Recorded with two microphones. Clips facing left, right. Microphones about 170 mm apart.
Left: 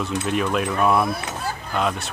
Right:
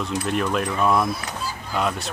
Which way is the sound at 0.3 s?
5° left (ahead or behind).